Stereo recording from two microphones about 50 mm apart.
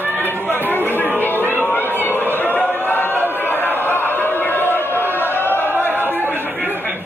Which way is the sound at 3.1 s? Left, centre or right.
Right.